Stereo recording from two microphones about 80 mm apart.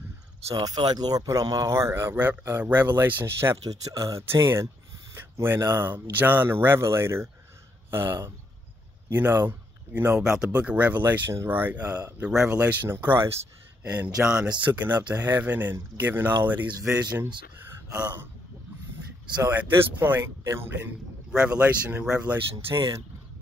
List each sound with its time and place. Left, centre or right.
0.6 s speech: right
1.7 s speech: right
3.6 s speech: right
4.3 s a man's voice: right
10.3 s speech: centre
12.3 s speech: centre
12.5 s speech: right
13.8 s speech: centre
17.9 s speech: right
19.2 s speech: right
19.5 s a man's voice: right
21.3 s speech: centre